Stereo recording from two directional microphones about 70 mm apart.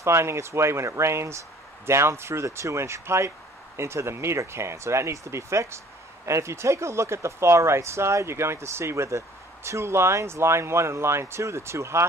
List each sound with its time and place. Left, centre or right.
0.0 s speech: right